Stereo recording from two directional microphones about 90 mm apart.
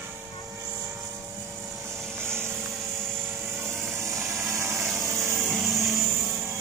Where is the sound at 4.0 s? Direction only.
35° right (ahead or behind).